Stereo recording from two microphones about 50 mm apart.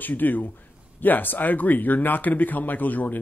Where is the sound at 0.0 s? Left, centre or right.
Left.